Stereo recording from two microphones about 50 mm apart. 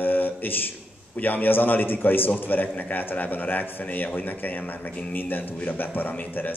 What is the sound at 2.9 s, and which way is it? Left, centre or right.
A man's voice, left.